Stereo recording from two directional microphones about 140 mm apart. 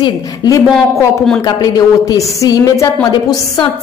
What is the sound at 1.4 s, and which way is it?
A woman's voice, 25° left (ahead or behind).